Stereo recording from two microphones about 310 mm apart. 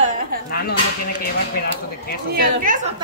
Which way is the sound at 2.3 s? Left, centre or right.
Right.